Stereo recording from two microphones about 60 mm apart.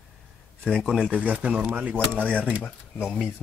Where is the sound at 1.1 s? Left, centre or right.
Right.